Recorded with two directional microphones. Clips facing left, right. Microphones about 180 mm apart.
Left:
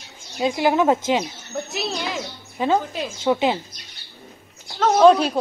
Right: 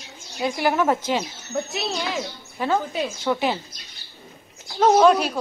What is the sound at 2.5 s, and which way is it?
A woman's voice, 20° left (ahead or behind).